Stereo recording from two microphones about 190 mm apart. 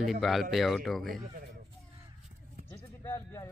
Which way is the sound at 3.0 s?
15° left (ahead or behind).